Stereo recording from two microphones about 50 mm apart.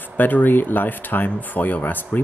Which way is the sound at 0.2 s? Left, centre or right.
Left.